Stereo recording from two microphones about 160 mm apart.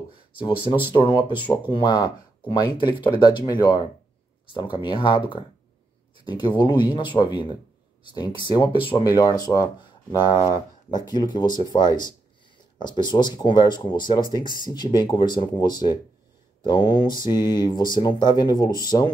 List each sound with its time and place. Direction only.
0.4 s speech: 30° left (ahead or behind)
6.2 s speech: 30° left (ahead or behind)